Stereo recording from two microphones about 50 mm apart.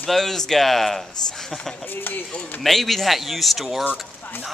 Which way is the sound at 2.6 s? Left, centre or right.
Centre.